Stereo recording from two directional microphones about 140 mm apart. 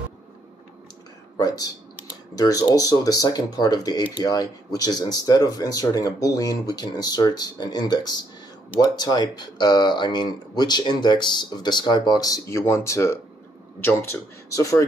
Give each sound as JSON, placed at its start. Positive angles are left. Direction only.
{"t": 1.3, "sound": "speech", "side_deg": 25}